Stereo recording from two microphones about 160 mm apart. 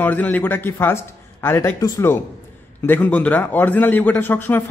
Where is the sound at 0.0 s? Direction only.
10° left (ahead or behind).